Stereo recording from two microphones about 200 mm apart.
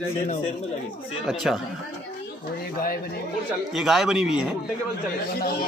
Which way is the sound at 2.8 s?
45° left (ahead or behind).